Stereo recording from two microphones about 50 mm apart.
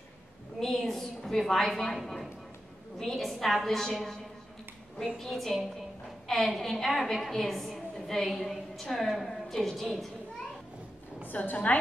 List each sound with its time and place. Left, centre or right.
0.6 s a woman's voice: centre
11.2 s a woman's voice: left